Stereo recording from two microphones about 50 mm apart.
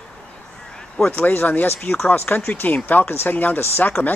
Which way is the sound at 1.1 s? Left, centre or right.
Left.